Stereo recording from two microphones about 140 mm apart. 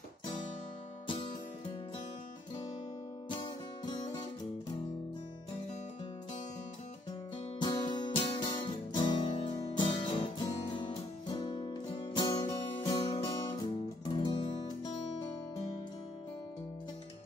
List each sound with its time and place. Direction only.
1.0 s music: 35° left (ahead or behind)
3.3 s music: 35° left (ahead or behind)
7.5 s music: 35° left (ahead or behind)